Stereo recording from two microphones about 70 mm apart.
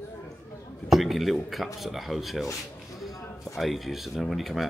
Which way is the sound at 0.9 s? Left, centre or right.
Centre.